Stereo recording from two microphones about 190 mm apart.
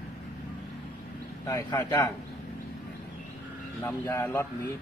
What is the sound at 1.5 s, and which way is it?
Speech, 15° left (ahead or behind).